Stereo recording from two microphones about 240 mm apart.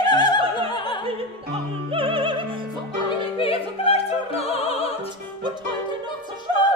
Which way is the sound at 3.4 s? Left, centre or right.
Left.